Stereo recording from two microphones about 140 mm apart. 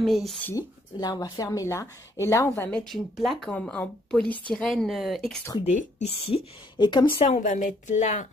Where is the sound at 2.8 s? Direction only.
Centre (ahead or behind).